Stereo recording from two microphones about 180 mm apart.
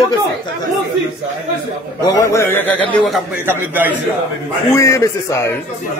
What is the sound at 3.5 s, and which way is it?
Speech, 10° right (ahead or behind).